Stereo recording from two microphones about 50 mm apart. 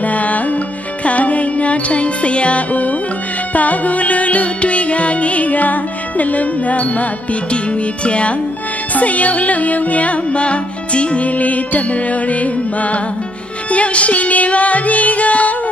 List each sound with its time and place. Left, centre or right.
0.0 s music: left